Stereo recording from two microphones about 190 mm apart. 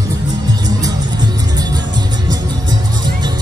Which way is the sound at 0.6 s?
20° right (ahead or behind).